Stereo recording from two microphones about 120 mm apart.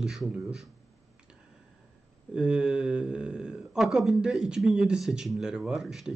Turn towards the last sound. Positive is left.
turn(degrees=-5)  # may be behind; listen again after turning